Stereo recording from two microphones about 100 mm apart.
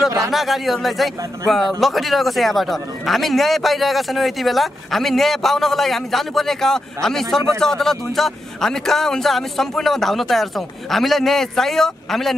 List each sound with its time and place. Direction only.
0.3 s speech: centre (ahead or behind)